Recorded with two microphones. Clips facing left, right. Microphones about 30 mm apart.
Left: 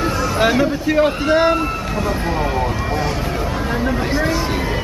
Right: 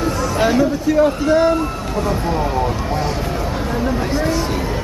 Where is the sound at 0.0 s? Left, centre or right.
Centre.